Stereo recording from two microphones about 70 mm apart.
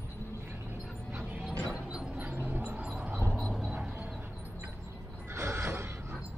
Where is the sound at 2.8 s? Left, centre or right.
Centre.